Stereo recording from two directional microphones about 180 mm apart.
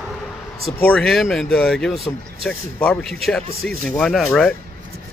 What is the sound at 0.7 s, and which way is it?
A man's voice, centre (ahead or behind).